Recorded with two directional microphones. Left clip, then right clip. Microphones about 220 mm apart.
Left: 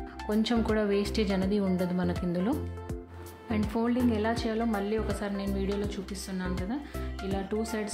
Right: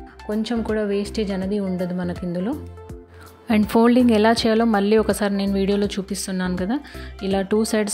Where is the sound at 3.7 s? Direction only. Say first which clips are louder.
Right 13 dB; 40° right (ahead or behind).